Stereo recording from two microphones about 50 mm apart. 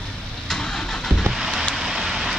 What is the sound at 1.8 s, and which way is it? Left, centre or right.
Vehicle, centre.